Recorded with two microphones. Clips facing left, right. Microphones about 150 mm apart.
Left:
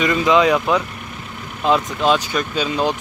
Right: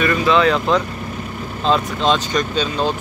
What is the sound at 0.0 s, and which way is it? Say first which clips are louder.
Speech: even; 15° left (ahead or behind).